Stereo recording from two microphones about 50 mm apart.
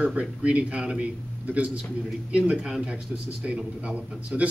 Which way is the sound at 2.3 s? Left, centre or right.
Centre.